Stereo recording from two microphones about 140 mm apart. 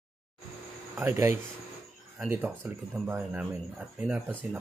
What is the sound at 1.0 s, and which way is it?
Speech, 15° right (ahead or behind).